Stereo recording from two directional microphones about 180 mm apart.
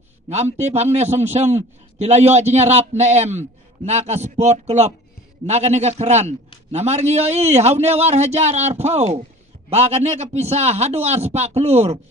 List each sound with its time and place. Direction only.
0.9 s a man's voice: 35° right (ahead or behind)